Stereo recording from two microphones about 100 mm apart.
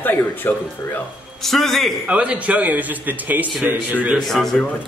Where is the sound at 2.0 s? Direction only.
10° right (ahead or behind).